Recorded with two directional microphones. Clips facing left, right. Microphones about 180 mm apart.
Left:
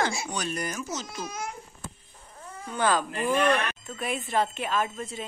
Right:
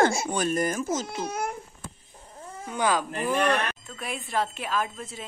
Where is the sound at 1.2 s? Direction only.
60° right (ahead or behind).